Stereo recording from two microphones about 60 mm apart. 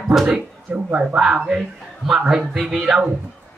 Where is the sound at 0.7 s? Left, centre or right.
Right.